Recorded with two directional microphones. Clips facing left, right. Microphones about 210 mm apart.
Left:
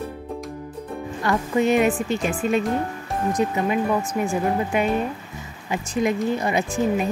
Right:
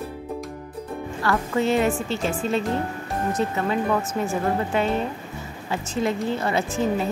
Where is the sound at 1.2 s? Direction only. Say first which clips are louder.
Left 2 dB; 15° left (ahead or behind).